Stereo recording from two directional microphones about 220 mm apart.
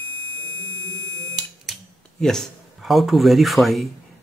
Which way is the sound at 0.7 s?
55° left (ahead or behind).